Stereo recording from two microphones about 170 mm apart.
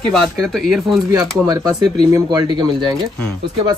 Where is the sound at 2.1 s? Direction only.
25° right (ahead or behind).